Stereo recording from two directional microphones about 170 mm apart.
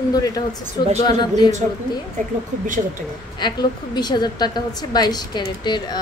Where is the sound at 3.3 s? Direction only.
25° left (ahead or behind).